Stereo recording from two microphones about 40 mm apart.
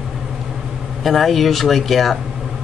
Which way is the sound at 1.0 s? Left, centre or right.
Centre.